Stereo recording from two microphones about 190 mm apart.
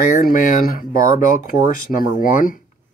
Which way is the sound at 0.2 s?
50° left (ahead or behind).